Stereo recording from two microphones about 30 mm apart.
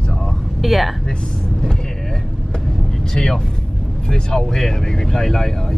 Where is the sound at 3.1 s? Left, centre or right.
Centre.